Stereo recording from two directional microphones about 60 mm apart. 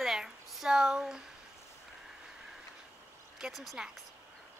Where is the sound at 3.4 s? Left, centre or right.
Centre.